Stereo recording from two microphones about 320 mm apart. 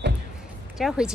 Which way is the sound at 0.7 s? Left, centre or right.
Centre.